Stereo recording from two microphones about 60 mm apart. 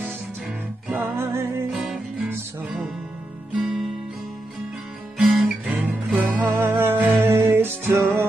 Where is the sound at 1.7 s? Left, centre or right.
Centre.